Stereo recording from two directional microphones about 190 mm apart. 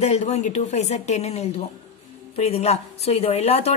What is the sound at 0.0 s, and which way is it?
Speech, 35° left (ahead or behind).